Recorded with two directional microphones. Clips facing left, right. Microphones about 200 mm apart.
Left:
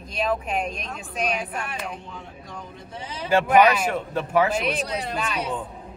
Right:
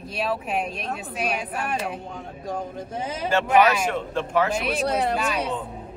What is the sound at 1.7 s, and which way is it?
A man's voice, 45° right (ahead or behind).